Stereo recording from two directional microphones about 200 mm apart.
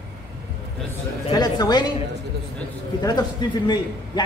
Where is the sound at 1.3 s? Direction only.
20° left (ahead or behind).